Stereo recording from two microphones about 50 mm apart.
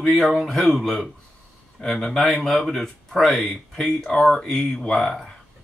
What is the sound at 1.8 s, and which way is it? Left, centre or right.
Speech, left.